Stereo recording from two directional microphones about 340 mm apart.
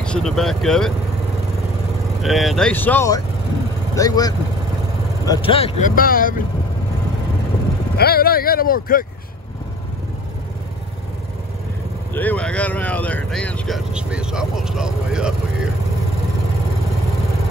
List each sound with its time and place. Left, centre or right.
0.0 s speech: centre
2.2 s speech: centre; by 6.4 s left
8.0 s speech: left
12.1 s speech: centre